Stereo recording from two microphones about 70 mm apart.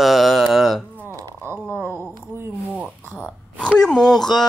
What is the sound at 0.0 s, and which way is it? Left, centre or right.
Mantra, centre.